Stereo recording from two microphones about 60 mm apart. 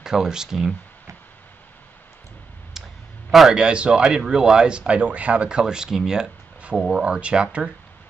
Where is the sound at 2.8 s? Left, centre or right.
Centre.